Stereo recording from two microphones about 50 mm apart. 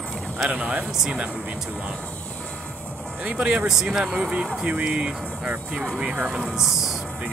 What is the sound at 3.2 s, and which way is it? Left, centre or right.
Speech, right.